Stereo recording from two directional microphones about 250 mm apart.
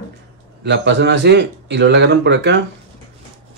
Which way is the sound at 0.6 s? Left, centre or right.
Right.